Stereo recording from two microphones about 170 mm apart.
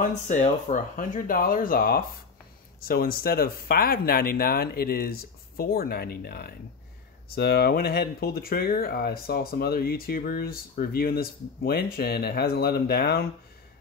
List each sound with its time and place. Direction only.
0.9 s speech: 55° left (ahead or behind)